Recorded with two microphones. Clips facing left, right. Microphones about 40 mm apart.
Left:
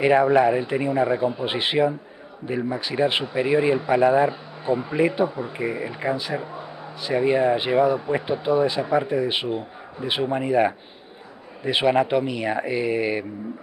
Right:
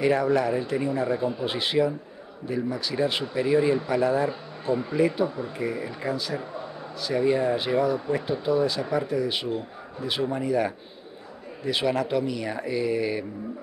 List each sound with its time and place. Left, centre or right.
0.0 s speech: left
1.4 s speech: left
4.3 s speech: centre
5.2 s speech: centre